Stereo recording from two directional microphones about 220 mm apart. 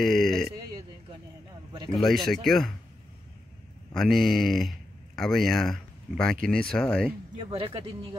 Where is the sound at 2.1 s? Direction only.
Centre (ahead or behind).